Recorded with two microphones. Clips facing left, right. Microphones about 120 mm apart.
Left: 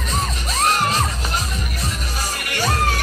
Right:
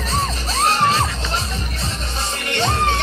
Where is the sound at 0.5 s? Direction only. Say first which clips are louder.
Right 2 dB; 30° right (ahead or behind).